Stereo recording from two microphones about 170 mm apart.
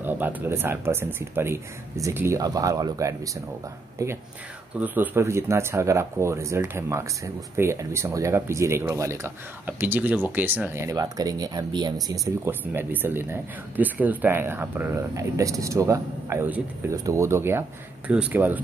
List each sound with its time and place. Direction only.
0.0 s speech: 10° right (ahead or behind)
12.4 s speech: 10° right (ahead or behind)